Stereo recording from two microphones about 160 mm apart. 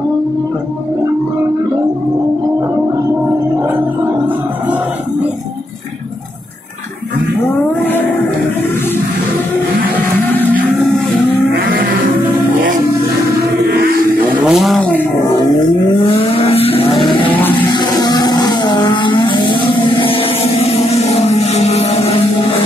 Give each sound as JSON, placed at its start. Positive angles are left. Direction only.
{"t": 11.5, "sound": "livestock", "side_deg": -85}
{"t": 13.7, "sound": "music", "side_deg": -75}
{"t": 14.4, "sound": "vehicle", "side_deg": 0}
{"t": 16.1, "sound": "vehicle", "side_deg": 35}
{"t": 17.3, "sound": "music", "side_deg": 10}
{"t": 17.7, "sound": "vehicle", "side_deg": 25}